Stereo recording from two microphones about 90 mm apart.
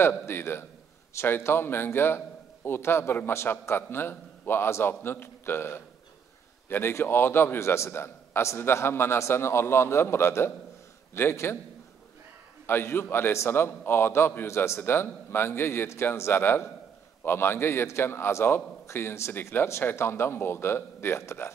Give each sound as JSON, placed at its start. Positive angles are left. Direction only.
{"t": 0.2, "sound": "a man's voice", "side_deg": 25}
{"t": 12.6, "sound": "a man's voice", "side_deg": 25}